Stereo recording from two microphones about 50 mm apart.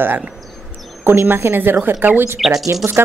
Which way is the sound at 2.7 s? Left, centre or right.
Right.